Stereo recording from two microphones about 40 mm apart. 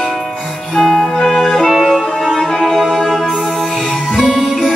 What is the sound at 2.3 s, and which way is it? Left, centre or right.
Music, centre.